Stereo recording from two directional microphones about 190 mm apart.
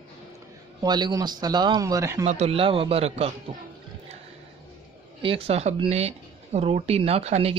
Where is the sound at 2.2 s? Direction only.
35° right (ahead or behind).